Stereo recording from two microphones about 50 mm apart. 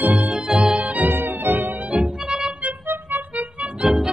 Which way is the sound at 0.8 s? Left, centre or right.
Right.